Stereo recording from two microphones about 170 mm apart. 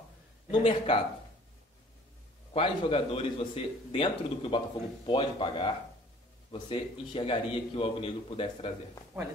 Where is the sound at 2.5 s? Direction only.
35° left (ahead or behind).